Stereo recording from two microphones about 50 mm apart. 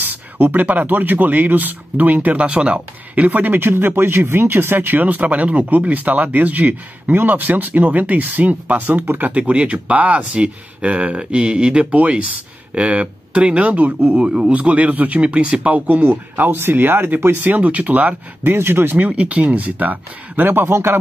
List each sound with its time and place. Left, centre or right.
0.0 s speech: right
2.3 s speech: right
14.1 s speech: right
16.0 s speech: right
18.9 s speech: right
20.6 s speech: right